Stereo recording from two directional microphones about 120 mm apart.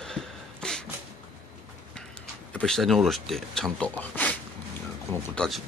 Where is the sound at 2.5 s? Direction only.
5° left (ahead or behind).